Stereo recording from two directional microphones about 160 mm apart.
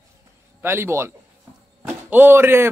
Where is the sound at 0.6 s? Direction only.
15° right (ahead or behind).